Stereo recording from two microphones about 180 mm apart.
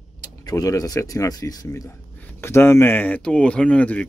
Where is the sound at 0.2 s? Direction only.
20° left (ahead or behind).